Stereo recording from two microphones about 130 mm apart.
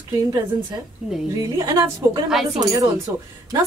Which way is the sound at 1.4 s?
30° right (ahead or behind).